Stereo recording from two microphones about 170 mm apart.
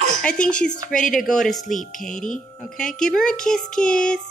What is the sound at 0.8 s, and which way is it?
Speech, 50° left (ahead or behind).